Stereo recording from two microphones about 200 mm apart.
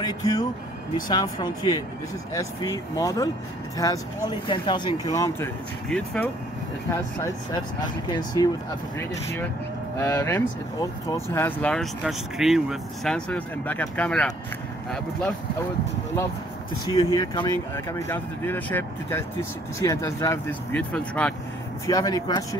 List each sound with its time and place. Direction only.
0.0 s speech: 20° left (ahead or behind)
8.4 s speech: 20° left (ahead or behind)
9.9 s speech: 15° left (ahead or behind)
16.9 s speech: 20° left (ahead or behind)
21.8 s speech: 15° left (ahead or behind)